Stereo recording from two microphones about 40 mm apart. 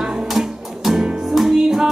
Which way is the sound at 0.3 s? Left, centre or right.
Centre.